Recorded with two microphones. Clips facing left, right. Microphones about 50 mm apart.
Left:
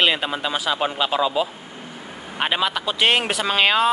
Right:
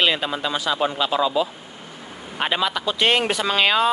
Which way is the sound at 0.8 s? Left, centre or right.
Left.